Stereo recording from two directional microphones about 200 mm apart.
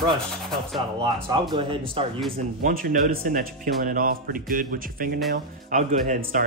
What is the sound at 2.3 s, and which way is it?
Speech, 45° right (ahead or behind).